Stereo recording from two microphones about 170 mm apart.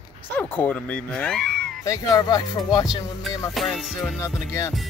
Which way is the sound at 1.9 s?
20° left (ahead or behind).